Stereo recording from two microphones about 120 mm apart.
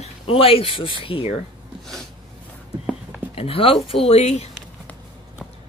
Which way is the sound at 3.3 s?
50° left (ahead or behind).